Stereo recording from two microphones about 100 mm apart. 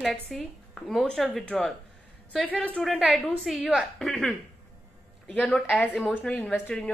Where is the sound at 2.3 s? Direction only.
15° left (ahead or behind).